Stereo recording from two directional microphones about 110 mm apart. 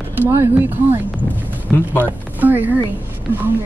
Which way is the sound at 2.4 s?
15° right (ahead or behind).